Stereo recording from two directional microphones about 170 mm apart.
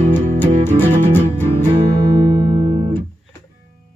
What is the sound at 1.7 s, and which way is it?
Music, 25° right (ahead or behind).